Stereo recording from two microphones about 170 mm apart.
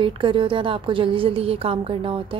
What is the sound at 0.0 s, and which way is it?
A woman's voice, 30° right (ahead or behind).